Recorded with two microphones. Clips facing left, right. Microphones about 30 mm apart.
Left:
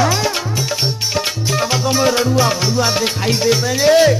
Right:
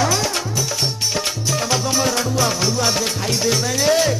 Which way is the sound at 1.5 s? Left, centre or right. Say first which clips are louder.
Left 3 dB; centre.